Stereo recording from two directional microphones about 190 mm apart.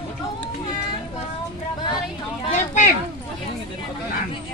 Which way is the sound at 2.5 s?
40° left (ahead or behind).